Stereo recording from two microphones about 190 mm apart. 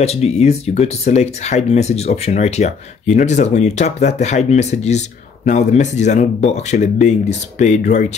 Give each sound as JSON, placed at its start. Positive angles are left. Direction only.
{"t": 0.0, "sound": "speech", "side_deg": 35}